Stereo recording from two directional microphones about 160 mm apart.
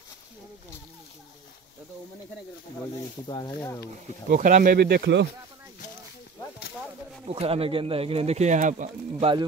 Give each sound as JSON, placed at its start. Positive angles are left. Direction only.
{"t": 3.3, "sound": "speech", "side_deg": 25}
{"t": 4.3, "sound": "speech", "side_deg": -55}
{"t": 4.7, "sound": "speech", "side_deg": -90}
{"t": 7.2, "sound": "speech", "side_deg": -40}